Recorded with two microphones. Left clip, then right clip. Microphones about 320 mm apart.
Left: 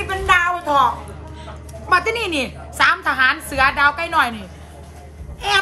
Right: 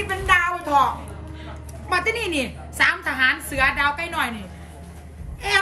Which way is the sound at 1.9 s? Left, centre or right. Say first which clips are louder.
Left 5 dB; centre.